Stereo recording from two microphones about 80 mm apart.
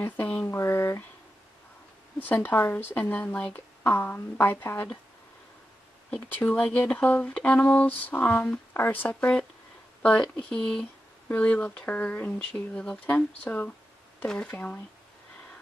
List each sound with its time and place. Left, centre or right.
0.5 s speech: left
2.1 s speech: left
6.0 s speech: centre
10.0 s speech: centre